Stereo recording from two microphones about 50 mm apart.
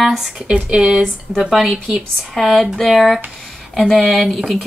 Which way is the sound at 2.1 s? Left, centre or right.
Centre.